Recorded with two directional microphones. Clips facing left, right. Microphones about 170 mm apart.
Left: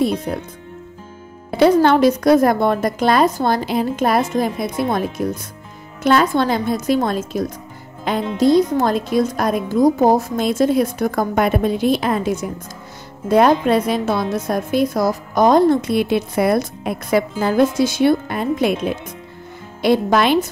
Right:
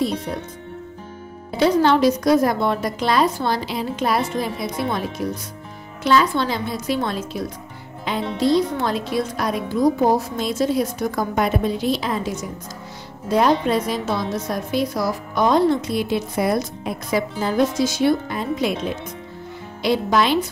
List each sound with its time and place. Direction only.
1.6 s a woman's voice: 55° left (ahead or behind)
19.8 s speech: 55° left (ahead or behind)